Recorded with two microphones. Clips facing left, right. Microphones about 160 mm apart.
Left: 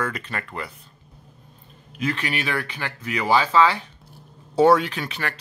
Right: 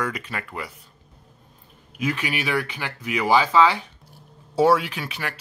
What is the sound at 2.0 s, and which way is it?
Speech, 10° right (ahead or behind).